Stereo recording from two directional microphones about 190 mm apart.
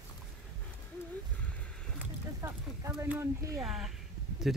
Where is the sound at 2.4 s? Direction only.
15° right (ahead or behind).